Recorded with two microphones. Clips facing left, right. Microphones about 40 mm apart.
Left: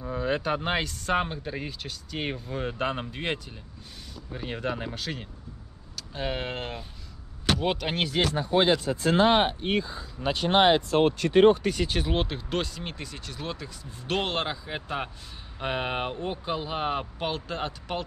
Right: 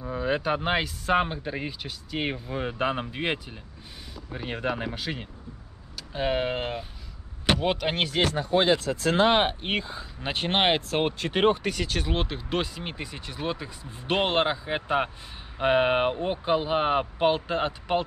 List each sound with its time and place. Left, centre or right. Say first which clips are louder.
0.0 s speech: right 1 dB; centre
9.0 s speech: left 1 dB; right
9.6 s speech: left 2 dB; right
10.2 s speech: left 3 dB; right
12.1 s speech: even; centre; by 18.0 s right